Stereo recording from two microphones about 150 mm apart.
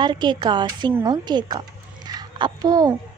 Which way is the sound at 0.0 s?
30° right (ahead or behind).